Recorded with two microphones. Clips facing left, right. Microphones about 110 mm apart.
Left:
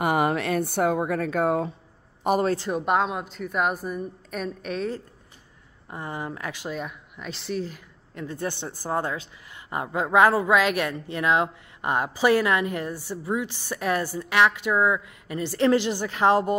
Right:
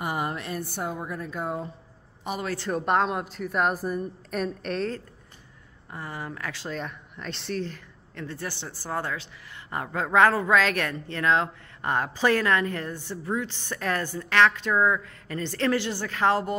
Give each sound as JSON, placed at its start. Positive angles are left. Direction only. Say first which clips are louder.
{"t": 0.0, "sound": "speech", "louder": "left 7 dB", "side_deg": 75}
{"t": 2.5, "sound": "speech", "louder": "left 2 dB", "side_deg": 15}
{"t": 2.8, "sound": "a woman's voice", "louder": "right 3 dB", "side_deg": 5}
{"t": 5.9, "sound": "speech", "louder": "left 3 dB", "side_deg": 20}